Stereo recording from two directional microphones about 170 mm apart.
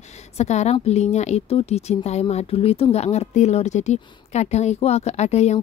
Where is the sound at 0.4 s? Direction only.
40° left (ahead or behind).